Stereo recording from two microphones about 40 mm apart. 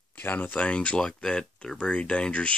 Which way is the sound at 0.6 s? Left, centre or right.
Left.